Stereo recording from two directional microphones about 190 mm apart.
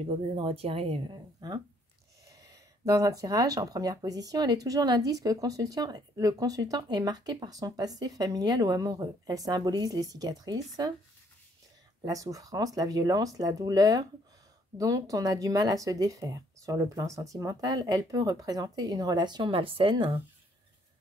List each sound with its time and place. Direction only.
0.0 s speech: 30° right (ahead or behind)
12.0 s speech: 20° right (ahead or behind)